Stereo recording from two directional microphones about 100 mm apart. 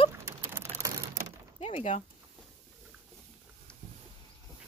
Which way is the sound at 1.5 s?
90° left.